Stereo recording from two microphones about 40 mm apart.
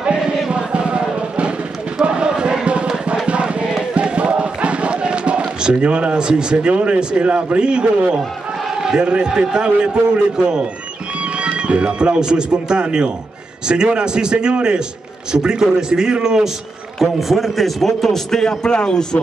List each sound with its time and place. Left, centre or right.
0.5 s music: right
2.0 s crowd: right
3.3 s music: right
3.9 s a sound: right
5.4 s a man's voice: right
15.9 s speech: right
17.0 s a man's voice: centre